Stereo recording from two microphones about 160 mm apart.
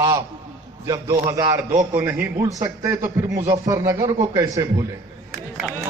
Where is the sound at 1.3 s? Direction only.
25° right (ahead or behind).